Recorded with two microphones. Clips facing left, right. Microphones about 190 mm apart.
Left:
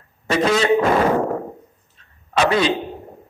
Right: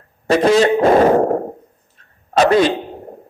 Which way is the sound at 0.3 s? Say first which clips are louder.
Right 4 dB; 40° right (ahead or behind).